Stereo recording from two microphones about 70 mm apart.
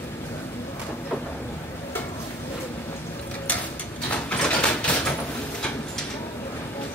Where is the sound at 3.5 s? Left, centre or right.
Left.